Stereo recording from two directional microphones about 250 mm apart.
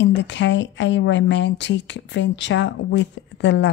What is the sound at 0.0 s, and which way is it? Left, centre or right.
Speech, left.